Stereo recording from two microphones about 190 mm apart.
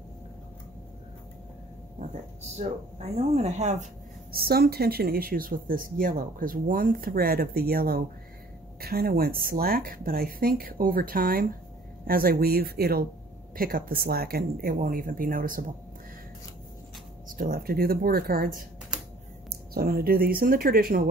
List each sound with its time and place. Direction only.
2.0 s speech: 35° right (ahead or behind)
17.3 s speech: 50° right (ahead or behind)